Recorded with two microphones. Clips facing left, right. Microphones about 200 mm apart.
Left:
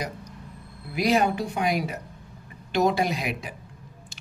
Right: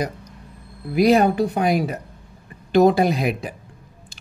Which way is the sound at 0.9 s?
40° right (ahead or behind).